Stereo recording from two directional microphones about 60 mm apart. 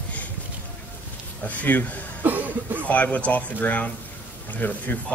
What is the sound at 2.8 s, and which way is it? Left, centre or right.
Speech, left.